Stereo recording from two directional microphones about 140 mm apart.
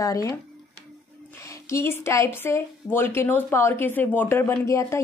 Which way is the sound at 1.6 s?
20° left (ahead or behind).